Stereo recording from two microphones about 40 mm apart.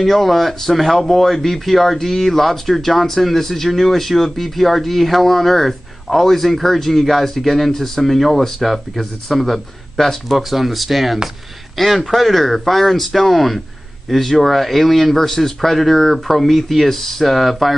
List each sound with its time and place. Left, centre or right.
0.0 s speech: centre